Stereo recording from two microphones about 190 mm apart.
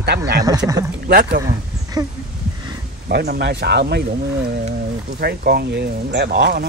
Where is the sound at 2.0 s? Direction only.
20° right (ahead or behind).